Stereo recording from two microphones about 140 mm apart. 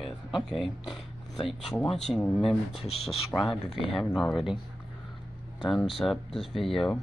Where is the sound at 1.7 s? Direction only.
Centre (ahead or behind).